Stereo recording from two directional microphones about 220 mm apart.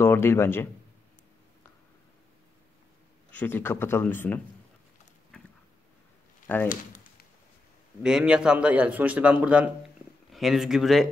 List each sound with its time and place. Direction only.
0.0 s speech: 10° left (ahead or behind)
3.3 s speech: 10° left (ahead or behind)
6.4 s speech: 10° left (ahead or behind)
6.7 s a sound: 35° left (ahead or behind)
8.0 s a man's voice: 5° right (ahead or behind)